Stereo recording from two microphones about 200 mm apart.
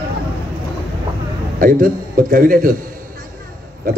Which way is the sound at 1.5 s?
45° right (ahead or behind).